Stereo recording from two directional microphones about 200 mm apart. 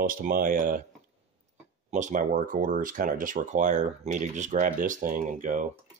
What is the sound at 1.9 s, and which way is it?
Speech, 35° right (ahead or behind).